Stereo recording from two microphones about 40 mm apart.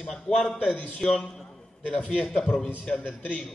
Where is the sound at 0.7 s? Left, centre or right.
Left.